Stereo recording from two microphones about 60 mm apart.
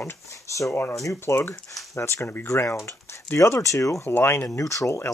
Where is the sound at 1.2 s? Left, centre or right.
Left.